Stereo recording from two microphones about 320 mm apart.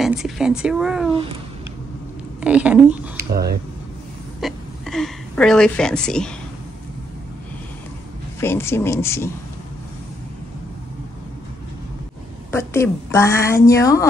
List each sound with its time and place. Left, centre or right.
0.0 s speech: centre
2.4 s speech: centre
3.3 s speech: right
4.4 s a woman's voice: centre
8.4 s a woman's voice: centre
12.4 s a woman's voice: centre